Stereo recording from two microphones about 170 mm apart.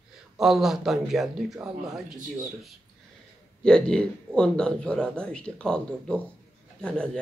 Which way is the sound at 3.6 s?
5° left (ahead or behind).